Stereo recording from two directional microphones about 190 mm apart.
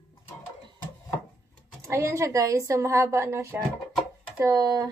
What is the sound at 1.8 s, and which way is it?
A woman's voice, 15° right (ahead or behind).